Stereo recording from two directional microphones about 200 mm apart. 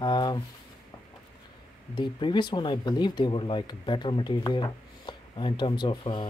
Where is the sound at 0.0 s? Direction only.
20° left (ahead or behind).